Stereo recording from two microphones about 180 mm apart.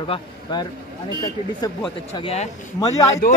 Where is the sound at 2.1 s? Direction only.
35° left (ahead or behind).